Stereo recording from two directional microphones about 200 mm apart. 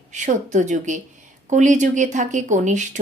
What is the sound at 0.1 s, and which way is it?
A woman's voice, 35° right (ahead or behind).